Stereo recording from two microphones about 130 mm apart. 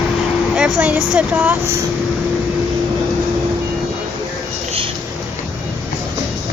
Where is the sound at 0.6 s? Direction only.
5° right (ahead or behind).